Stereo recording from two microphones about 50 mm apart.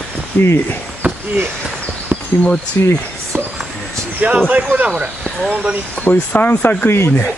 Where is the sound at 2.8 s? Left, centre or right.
Left.